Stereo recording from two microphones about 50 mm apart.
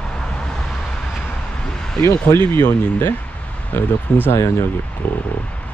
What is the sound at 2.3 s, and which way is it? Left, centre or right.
Speech, left.